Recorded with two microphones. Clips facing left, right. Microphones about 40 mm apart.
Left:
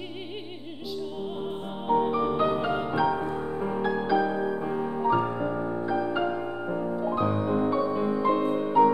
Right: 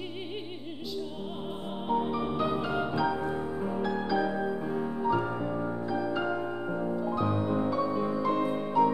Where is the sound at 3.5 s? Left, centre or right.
Left.